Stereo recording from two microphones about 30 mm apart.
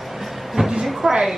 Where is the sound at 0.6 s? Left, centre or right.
Right.